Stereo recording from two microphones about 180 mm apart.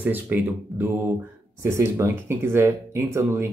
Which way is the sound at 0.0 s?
10° right (ahead or behind).